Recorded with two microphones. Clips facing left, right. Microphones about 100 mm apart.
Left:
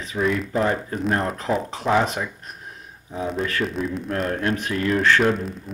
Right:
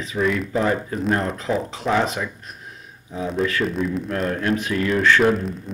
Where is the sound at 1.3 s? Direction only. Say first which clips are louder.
Even; 45° left (ahead or behind).